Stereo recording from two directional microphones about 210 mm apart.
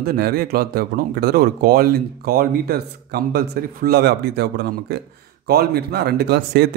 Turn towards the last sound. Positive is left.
turn(degrees=-50)  # may be behind; listen again after turning